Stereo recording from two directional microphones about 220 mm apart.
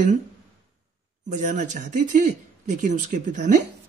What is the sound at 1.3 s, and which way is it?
Speech, 35° right (ahead or behind).